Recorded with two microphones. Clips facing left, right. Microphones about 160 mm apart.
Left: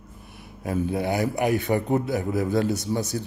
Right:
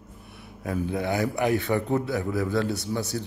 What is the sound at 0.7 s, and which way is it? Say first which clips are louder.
A man's voice: left 2 dB; 25° left (ahead or behind).